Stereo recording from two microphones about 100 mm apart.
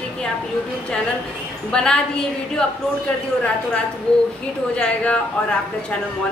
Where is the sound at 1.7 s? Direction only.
5° left (ahead or behind).